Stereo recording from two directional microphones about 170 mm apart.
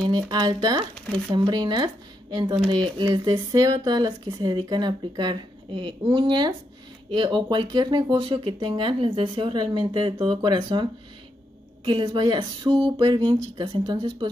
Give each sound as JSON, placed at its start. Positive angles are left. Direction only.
{"t": 0.0, "sound": "speech", "side_deg": -25}